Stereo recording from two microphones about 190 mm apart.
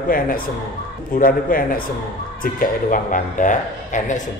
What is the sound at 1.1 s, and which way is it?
A man's voice, 50° left (ahead or behind).